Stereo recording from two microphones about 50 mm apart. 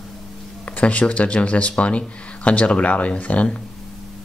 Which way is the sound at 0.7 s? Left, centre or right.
Left.